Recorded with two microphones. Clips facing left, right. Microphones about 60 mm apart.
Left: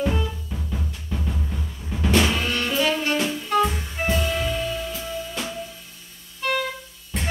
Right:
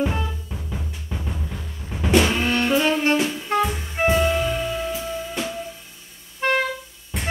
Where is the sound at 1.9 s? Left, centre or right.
Centre.